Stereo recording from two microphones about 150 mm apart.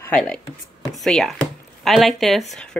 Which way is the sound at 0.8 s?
5° left (ahead or behind).